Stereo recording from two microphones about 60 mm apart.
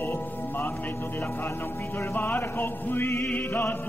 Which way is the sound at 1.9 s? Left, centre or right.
Left.